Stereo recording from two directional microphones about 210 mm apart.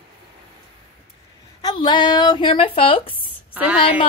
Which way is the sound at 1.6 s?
20° left (ahead or behind).